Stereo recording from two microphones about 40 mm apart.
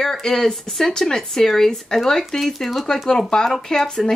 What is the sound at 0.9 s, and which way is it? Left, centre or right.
Speech, centre.